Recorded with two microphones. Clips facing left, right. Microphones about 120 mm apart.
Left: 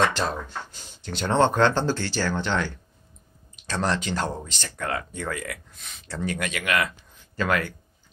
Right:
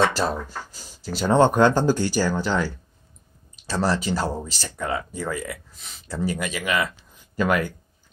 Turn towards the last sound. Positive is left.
turn(degrees=-10)  # may be behind; listen again after turning